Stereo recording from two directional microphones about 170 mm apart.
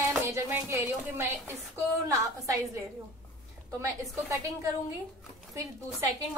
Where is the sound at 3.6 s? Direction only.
20° right (ahead or behind).